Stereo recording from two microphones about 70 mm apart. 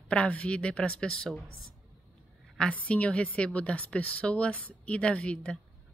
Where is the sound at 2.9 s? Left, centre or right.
Centre.